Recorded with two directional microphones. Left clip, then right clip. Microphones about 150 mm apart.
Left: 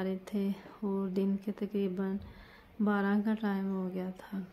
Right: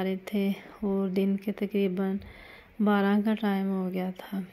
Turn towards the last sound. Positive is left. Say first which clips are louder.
# right 6 dB
turn(degrees=-25)  # may be behind; listen again after turning